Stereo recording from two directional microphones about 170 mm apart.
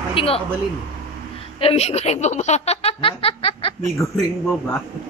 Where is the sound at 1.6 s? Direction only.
35° left (ahead or behind).